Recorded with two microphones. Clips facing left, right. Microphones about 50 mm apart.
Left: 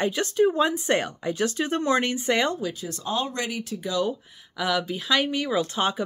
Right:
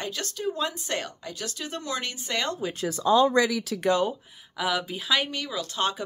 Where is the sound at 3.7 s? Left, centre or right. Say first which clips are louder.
Right 2 dB; right.